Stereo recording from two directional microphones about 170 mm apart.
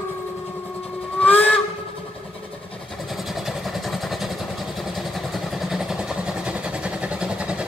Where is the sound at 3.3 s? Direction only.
Centre (ahead or behind).